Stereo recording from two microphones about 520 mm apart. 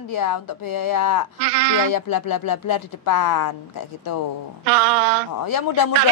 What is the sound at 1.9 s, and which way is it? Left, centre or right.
Speech, left.